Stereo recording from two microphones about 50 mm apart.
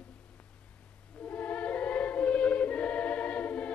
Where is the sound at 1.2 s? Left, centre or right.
Left.